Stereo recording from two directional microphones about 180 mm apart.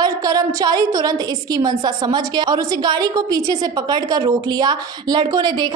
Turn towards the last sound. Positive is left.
turn(degrees=-25)  # may be behind; listen again after turning